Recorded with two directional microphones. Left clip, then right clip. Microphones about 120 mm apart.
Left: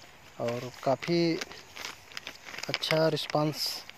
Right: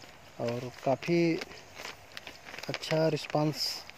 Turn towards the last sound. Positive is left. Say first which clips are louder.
# left 1 dB
turn(degrees=0)  # may be behind; listen again after turning